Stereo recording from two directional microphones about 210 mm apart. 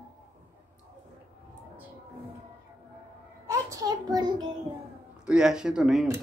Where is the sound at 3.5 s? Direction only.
15° right (ahead or behind).